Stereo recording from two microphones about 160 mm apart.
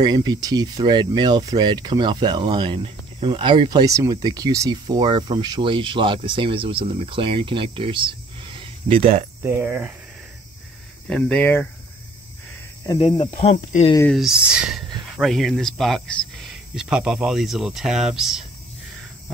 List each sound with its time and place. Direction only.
0.0 s speech: 25° right (ahead or behind)
9.4 s speech: 15° right (ahead or behind)
11.1 s speech: 5° left (ahead or behind)
12.8 s speech: 30° left (ahead or behind)
14.1 s speech: 5° right (ahead or behind)